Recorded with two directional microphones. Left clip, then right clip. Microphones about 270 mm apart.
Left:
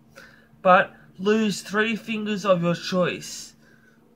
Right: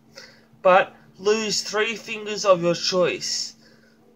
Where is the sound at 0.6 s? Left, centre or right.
Centre.